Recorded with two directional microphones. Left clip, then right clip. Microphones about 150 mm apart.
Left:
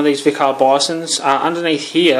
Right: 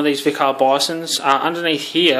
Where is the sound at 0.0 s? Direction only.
Centre (ahead or behind).